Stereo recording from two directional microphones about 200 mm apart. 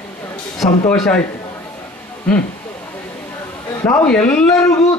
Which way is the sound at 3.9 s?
5° left (ahead or behind).